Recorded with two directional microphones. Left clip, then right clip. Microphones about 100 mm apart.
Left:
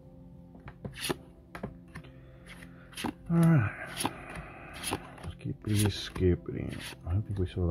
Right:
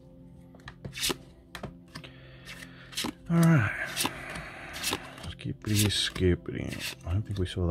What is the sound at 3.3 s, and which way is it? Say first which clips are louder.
Speech: right 3 dB; 35° right (ahead or behind).